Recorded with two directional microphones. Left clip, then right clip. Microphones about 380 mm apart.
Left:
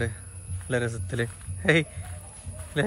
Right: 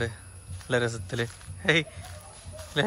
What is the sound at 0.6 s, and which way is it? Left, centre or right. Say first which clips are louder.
Speech: right 2 dB; centre.